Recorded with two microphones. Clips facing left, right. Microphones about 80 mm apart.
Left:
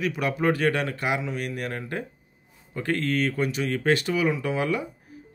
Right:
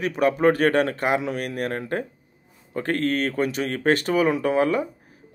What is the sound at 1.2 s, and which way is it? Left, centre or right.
Speech, right.